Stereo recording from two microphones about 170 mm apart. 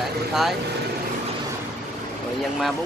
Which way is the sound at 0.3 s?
Centre (ahead or behind).